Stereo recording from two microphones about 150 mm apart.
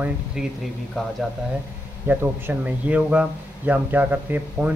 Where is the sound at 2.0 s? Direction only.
15° right (ahead or behind).